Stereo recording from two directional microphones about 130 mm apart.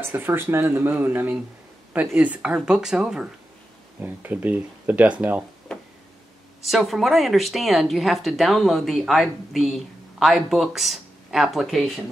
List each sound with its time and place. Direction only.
0.0 s speech: 15° right (ahead or behind)
5.7 s a sound: 5° left (ahead or behind)
6.6 s speech: centre (ahead or behind)